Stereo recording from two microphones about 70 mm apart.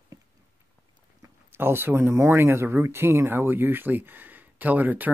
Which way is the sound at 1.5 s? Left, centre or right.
Right.